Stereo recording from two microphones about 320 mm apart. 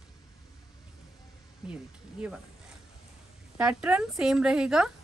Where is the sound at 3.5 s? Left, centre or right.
Centre.